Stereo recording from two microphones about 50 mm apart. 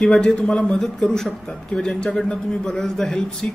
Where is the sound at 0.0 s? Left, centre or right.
Centre.